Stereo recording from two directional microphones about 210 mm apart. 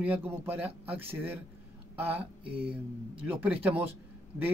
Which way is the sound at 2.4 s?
25° right (ahead or behind).